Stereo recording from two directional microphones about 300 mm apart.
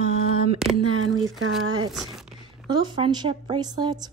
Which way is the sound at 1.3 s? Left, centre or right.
Centre.